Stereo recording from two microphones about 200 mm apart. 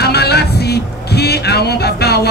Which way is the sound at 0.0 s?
55° left (ahead or behind).